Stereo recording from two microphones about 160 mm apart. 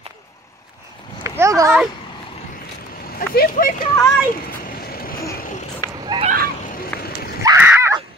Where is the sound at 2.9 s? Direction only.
65° left (ahead or behind).